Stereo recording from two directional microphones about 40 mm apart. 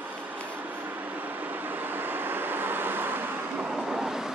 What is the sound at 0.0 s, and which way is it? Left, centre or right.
Vehicle, right.